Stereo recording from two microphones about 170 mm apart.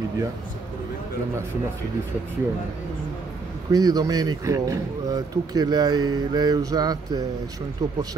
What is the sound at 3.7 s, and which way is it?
Speech, 20° right (ahead or behind).